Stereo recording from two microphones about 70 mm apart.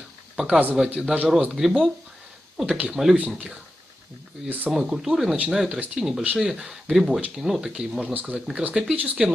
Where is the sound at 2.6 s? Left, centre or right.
Centre.